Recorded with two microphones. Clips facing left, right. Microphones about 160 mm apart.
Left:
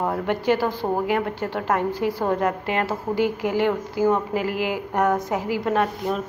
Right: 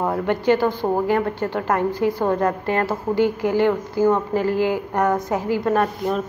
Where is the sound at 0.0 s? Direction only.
Centre (ahead or behind).